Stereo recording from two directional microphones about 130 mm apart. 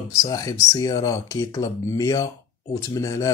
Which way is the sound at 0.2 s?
25° left (ahead or behind).